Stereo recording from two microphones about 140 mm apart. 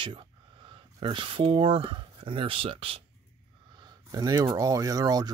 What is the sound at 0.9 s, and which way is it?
Speech, 30° right (ahead or behind).